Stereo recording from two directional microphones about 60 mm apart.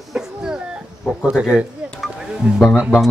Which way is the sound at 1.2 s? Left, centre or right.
Centre.